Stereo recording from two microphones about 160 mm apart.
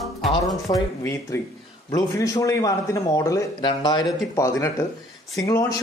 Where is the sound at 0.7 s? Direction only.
25° left (ahead or behind).